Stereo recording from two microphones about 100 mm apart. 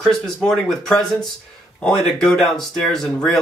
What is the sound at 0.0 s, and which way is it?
Speech, 5° left (ahead or behind).